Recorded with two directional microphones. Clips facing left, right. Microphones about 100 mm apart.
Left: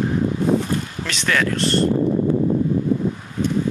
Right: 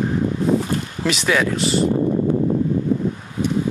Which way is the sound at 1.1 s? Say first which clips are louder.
Right 3 dB; 10° right (ahead or behind).